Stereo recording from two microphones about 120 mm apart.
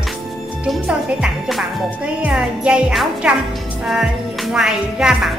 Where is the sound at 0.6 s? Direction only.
10° right (ahead or behind).